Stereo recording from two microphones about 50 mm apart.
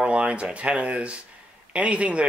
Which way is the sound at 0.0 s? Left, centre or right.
Right.